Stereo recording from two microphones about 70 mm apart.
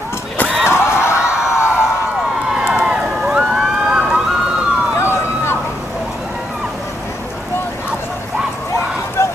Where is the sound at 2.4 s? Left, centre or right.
Centre.